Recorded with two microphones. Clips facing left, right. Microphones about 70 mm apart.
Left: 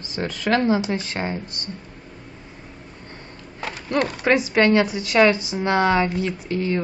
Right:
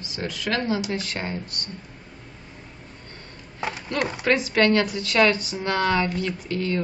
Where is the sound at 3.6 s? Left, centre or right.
Centre.